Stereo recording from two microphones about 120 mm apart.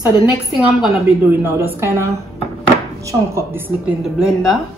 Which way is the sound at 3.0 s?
25° right (ahead or behind).